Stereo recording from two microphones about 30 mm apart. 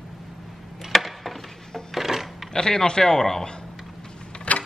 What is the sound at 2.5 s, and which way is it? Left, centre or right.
Speech, left.